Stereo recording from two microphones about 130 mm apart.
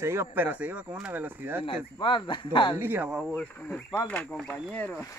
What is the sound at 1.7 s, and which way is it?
Speech, 40° left (ahead or behind).